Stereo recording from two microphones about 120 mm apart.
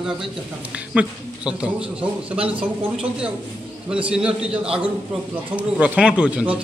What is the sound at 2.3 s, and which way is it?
Speech, 50° right (ahead or behind).